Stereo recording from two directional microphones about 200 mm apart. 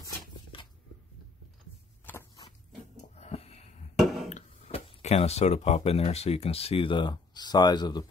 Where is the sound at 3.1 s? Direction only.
30° left (ahead or behind).